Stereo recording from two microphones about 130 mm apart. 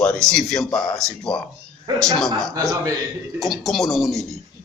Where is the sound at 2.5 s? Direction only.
25° right (ahead or behind).